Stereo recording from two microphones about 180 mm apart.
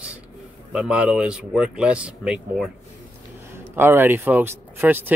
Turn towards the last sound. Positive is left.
turn(degrees=-10)  # may be behind; listen again after turning